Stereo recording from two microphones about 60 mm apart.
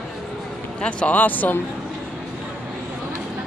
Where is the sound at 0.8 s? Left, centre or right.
Left.